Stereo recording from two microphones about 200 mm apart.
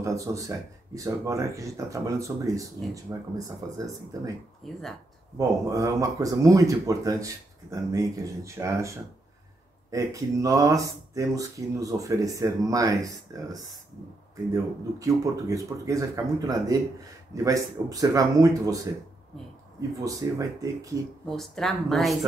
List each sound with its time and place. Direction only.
0.0 s speech: 15° right (ahead or behind)
4.6 s speech: centre (ahead or behind)
5.4 s speech: 15° right (ahead or behind)
20.0 s speech: 15° right (ahead or behind)
21.3 s speech: centre (ahead or behind)